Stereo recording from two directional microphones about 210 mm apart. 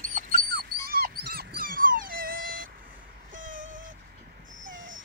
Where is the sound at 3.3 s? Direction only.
40° right (ahead or behind).